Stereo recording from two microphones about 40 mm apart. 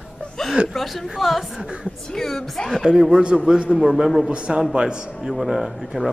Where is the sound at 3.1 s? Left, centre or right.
Right.